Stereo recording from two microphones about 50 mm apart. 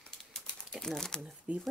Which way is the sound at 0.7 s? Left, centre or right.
Centre.